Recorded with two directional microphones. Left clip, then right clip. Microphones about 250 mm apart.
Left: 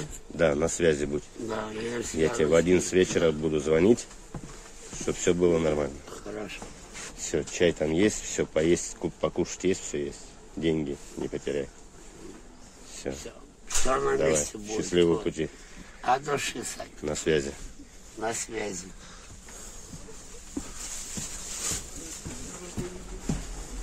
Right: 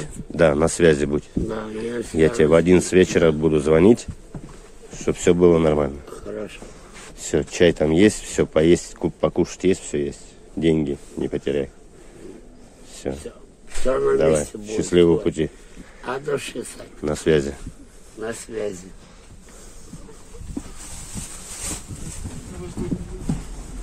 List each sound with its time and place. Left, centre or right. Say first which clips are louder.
0.0 s speech: right 8 dB; right
1.5 s a man's voice: right 2 dB; centre
2.1 s speech: right 7 dB; right
12.9 s a sound: right 6 dB; centre
13.8 s a man's voice: right 7 dB; centre
14.2 s speech: right 7 dB; centre
16.0 s a man's voice: even; centre
17.0 s speech: right 7 dB; centre
18.5 s speech: right 6 dB; centre